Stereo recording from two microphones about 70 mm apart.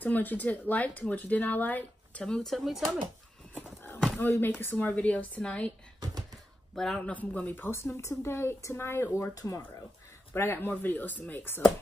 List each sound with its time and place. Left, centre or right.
0.0 s speech: left
2.2 s speech: centre
4.2 s a woman's voice: left; by 5.7 s centre
6.7 s speech: centre
7.1 s speech: left
9.3 s speech: left
10.3 s speech: left